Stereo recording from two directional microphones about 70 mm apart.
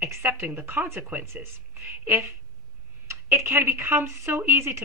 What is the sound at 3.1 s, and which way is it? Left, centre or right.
A woman's voice, right.